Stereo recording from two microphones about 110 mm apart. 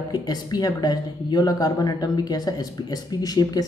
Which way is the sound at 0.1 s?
40° left (ahead or behind).